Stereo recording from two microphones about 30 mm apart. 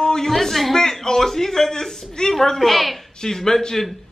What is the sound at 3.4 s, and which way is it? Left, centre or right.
Speech, centre.